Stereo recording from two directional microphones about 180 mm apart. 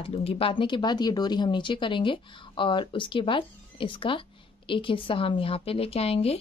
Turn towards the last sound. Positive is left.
turn(degrees=35)  # may be behind; listen again after turning